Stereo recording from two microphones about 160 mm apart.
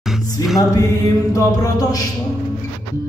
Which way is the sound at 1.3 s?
20° left (ahead or behind).